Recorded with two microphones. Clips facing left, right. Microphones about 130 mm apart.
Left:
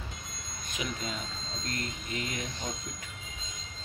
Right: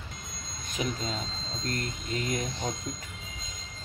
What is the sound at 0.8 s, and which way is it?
Speech, 35° right (ahead or behind).